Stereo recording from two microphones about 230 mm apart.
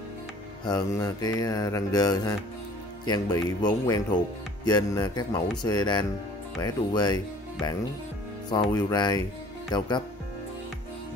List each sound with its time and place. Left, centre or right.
0.7 s mantra: centre
5.6 s speech: centre
8.5 s mantra: centre
9.7 s speech: centre